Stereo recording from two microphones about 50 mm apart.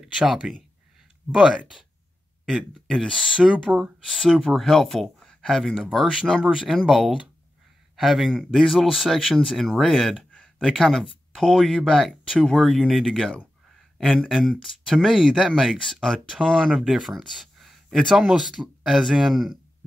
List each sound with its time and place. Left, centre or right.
0.0 s a sound: centre
2.4 s speech: centre
3.5 s speech: right
4.1 s speech: centre
14.6 s speech: centre
16.7 s speech: centre